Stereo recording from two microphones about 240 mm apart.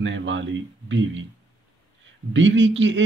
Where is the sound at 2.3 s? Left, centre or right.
Right.